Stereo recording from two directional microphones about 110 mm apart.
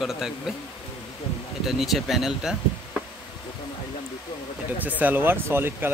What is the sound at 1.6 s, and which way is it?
Speech, centre (ahead or behind).